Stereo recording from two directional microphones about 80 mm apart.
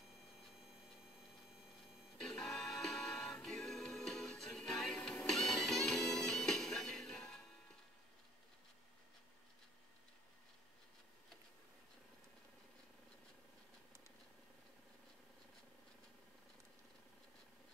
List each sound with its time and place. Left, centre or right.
2.2 s music: centre